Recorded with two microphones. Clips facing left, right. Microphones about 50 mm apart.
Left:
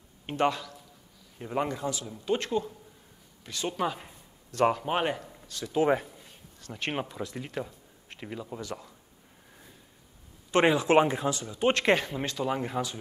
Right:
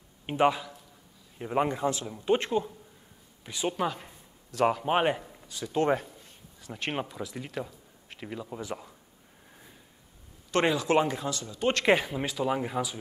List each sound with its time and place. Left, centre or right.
0.3 s a man's voice: centre
3.4 s a man's voice: centre
3.8 s a sound: centre
4.8 s a man's voice: centre
5.3 s a sound: centre
5.8 s speech: centre
8.5 s a man's voice: centre
10.5 s speech: centre
11.8 s speech: centre